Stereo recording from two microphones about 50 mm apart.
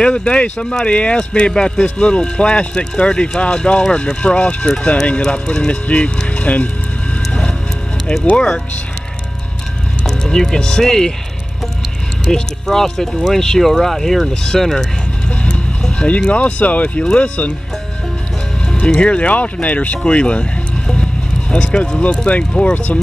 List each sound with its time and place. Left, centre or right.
0.0 s speech: left
8.3 s speech: centre
10.0 s speech: centre
12.3 s speech: centre
15.2 s speech: left
18.9 s speech: left
20.0 s music: left
22.1 s speech: centre